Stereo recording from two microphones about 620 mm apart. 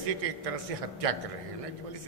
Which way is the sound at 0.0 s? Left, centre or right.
Right.